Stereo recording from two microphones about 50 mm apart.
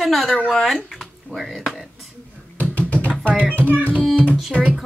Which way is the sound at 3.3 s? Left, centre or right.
Right.